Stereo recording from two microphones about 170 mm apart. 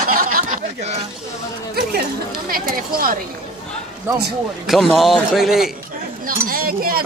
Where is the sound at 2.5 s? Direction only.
60° right (ahead or behind).